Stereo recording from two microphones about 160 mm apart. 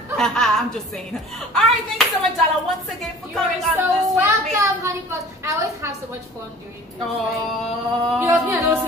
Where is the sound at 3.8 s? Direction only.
20° right (ahead or behind).